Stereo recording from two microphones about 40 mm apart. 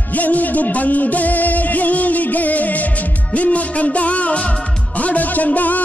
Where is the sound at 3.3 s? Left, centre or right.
Left.